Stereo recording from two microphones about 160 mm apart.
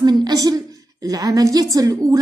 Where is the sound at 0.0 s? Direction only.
25° right (ahead or behind).